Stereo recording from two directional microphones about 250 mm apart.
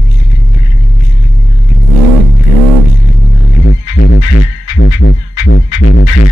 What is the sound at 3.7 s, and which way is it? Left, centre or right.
Music, left.